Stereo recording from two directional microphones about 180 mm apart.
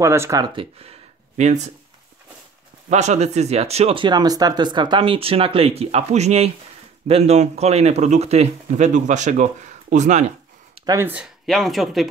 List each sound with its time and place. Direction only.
0.0 s speech: 15° right (ahead or behind)
0.6 s speech: 35° right (ahead or behind)
2.9 s speech: 40° right (ahead or behind)
10.9 s speech: 10° right (ahead or behind)
11.4 s speech: centre (ahead or behind)